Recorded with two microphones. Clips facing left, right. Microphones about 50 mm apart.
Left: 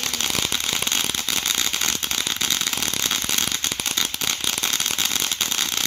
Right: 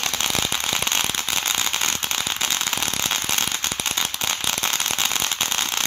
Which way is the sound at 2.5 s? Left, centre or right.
Right.